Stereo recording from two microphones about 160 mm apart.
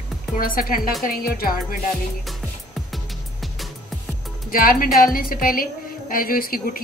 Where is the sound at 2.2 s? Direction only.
Centre (ahead or behind).